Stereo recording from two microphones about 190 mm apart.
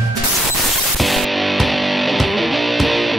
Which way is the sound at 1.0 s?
Centre (ahead or behind).